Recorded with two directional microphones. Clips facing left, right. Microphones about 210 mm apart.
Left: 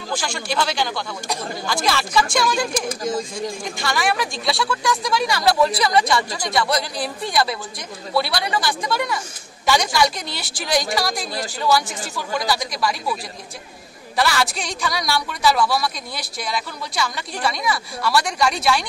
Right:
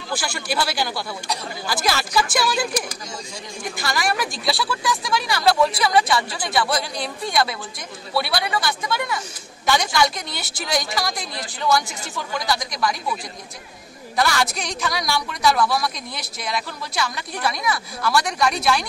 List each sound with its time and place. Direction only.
0.1 s a woman's voice: 5° right (ahead or behind)
3.0 s speech: 50° left (ahead or behind)
3.7 s a woman's voice: centre (ahead or behind)
14.1 s a woman's voice: centre (ahead or behind)